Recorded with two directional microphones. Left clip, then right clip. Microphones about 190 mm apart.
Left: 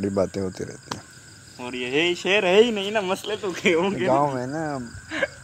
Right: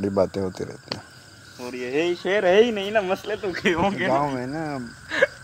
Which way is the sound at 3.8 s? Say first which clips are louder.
Right 1 dB; 50° right (ahead or behind).